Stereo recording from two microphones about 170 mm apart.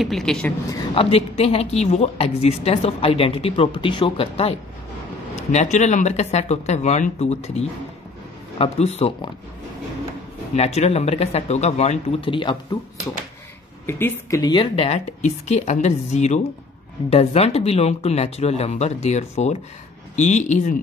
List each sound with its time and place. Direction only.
0.0 s a woman's voice: centre (ahead or behind)
0.9 s a woman's voice: 35° left (ahead or behind)
10.5 s a woman's voice: 40° left (ahead or behind)
13.8 s a woman's voice: 15° left (ahead or behind); by 20.7 s 45° left (ahead or behind)